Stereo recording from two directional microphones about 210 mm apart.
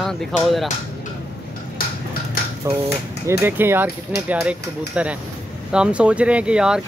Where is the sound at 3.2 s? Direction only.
10° right (ahead or behind).